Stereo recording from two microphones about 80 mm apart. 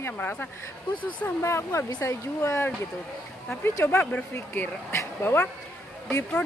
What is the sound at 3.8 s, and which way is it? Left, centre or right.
Speech, left.